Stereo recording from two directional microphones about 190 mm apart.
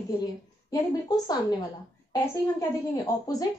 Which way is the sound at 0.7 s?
20° left (ahead or behind).